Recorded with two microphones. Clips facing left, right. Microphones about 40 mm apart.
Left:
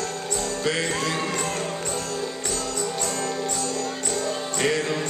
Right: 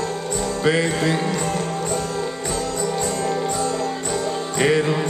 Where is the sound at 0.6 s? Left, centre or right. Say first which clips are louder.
Right 7 dB; centre.